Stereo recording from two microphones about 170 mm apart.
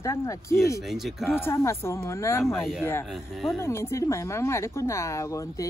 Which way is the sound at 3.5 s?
15° left (ahead or behind).